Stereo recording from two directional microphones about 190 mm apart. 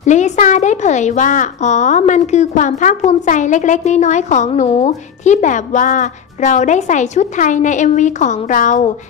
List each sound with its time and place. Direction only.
0.0 s speech: 40° left (ahead or behind)